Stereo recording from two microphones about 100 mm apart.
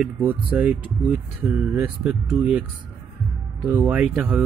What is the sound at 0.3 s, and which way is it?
Speech, 15° right (ahead or behind).